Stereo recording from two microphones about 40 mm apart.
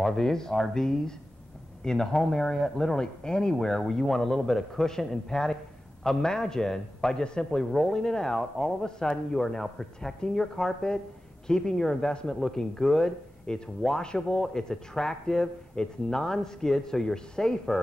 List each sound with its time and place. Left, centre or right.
0.0 s speech: centre
8.8 s speech: centre